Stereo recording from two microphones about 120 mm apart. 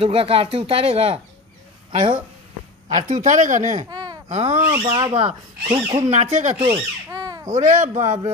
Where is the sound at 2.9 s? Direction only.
85° right.